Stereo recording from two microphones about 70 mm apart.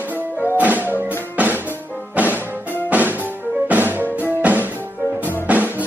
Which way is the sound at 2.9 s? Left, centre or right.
Right.